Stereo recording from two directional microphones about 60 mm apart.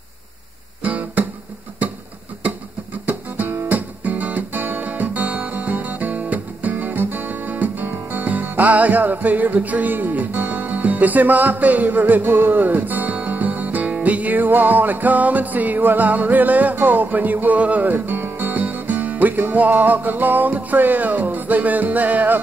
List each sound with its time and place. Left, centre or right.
0.8 s guitar: right
3.1 s music: right
3.6 s guitar: right
8.1 s music: right